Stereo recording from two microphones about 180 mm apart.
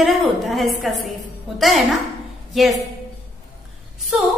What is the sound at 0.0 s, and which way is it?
A woman's voice, centre (ahead or behind).